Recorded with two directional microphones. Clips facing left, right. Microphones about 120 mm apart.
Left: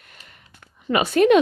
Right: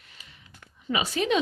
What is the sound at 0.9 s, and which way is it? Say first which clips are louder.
Speech: left 10 dB; 60° left (ahead or behind).